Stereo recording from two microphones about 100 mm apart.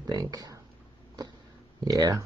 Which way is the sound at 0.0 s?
35° right (ahead or behind).